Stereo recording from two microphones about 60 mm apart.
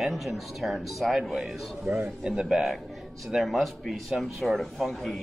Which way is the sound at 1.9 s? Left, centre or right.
Right.